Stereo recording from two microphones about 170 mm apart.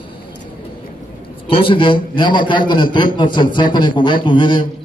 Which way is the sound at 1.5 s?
30° left (ahead or behind).